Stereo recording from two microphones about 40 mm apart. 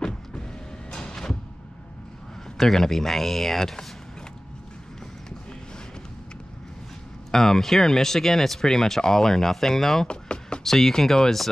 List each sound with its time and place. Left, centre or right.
0.0 s vehicle: left
0.9 s a sound: centre
2.5 s speech: centre
7.2 s speech: centre
10.0 s speech: left
10.6 s speech: centre